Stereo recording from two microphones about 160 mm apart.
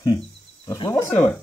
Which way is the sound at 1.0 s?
5° left (ahead or behind).